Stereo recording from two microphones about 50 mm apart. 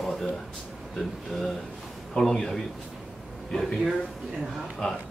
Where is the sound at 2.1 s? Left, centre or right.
Centre.